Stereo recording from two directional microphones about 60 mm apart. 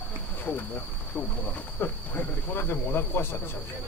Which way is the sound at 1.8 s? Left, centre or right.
Left.